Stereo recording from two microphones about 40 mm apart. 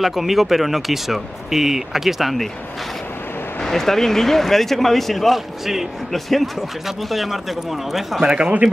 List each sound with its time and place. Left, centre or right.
0.0 s speech: centre
3.6 s speech: centre
8.3 s speech: right